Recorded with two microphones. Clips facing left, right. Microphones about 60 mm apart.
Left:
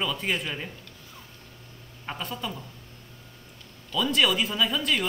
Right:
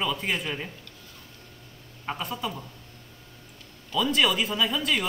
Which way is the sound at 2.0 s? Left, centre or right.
Centre.